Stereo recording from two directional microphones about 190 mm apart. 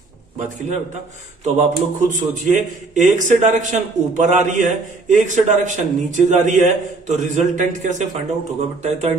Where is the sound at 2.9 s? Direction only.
40° right (ahead or behind).